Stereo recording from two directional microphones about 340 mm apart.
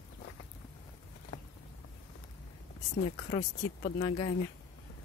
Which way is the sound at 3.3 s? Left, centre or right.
Centre.